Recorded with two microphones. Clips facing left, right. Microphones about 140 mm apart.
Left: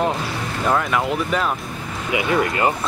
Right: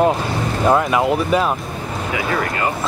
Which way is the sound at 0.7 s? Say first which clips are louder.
Right 4 dB; 20° right (ahead or behind).